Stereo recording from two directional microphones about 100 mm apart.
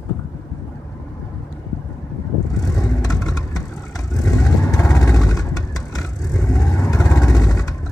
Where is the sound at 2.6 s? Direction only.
35° left (ahead or behind).